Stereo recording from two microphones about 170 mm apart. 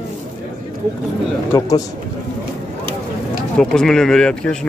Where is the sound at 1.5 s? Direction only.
20° left (ahead or behind).